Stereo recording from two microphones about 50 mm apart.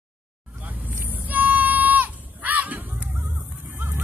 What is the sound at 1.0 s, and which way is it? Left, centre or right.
Goat, right.